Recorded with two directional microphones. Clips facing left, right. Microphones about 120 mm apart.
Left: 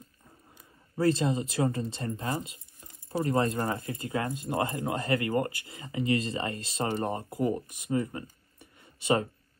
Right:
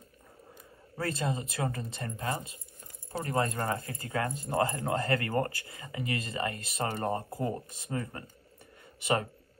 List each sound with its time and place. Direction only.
0.9 s speech: 25° left (ahead or behind)